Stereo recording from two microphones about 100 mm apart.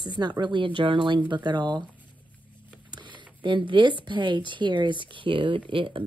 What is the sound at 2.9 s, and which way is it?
Speech, 55° right (ahead or behind).